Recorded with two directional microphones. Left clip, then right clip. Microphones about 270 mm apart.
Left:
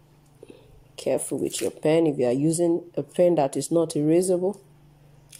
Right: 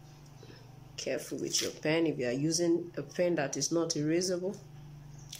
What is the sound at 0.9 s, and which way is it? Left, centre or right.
Speech, centre.